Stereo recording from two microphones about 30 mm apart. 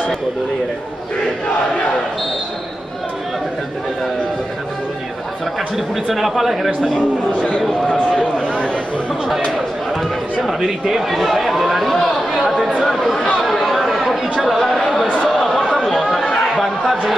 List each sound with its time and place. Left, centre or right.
6.1 s speech: centre
7.9 s speech: left
11.1 s speech: centre
12.8 s chatter: centre
14.6 s speech: centre
15.2 s chatter: centre